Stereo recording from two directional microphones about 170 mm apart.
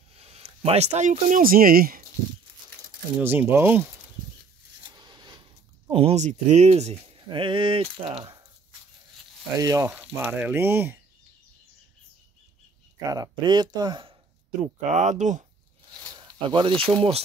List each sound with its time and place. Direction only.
0.1 s speech: 40° right (ahead or behind); by 2.0 s 60° right (ahead or behind)
3.2 s speech: 10° right (ahead or behind)
4.9 s a sound: 25° right (ahead or behind)
5.9 s speech: 35° right (ahead or behind)
9.6 s speech: 20° right (ahead or behind)
9.8 s speech: 10° right (ahead or behind)
13.0 s speech: 20° right (ahead or behind)
14.6 s speech: 45° right (ahead or behind)
16.3 s speech: 25° right (ahead or behind)